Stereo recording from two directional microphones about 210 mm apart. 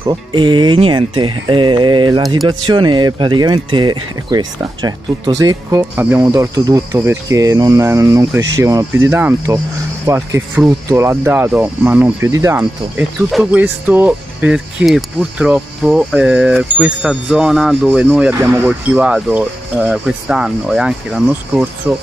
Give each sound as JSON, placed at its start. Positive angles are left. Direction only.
{"t": 0.0, "sound": "speech", "side_deg": -20}